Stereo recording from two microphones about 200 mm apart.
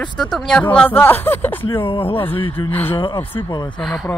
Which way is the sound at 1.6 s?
25° left (ahead or behind).